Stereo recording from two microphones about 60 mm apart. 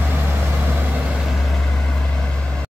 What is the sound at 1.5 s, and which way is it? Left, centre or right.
Vehicle, centre.